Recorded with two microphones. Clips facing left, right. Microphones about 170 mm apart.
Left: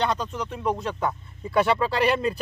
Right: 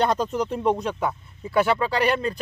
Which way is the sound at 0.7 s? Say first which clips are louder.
Right 1 dB; 15° right (ahead or behind).